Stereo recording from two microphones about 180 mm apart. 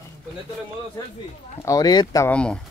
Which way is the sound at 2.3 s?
5° left (ahead or behind).